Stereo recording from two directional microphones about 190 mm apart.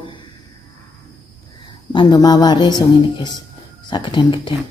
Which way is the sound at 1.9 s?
25° left (ahead or behind).